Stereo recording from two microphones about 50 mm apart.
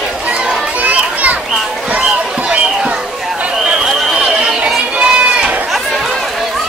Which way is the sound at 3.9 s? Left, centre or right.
Centre.